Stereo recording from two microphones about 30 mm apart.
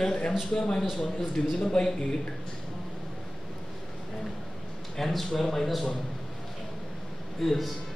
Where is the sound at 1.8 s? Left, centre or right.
Left.